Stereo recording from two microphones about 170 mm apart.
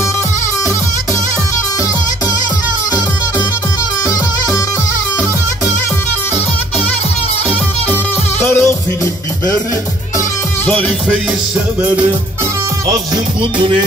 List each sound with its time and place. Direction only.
7.4 s music: 10° left (ahead or behind)
10.7 s music: 10° left (ahead or behind)
11.8 s music: 10° right (ahead or behind)
13.4 s music: 30° right (ahead or behind)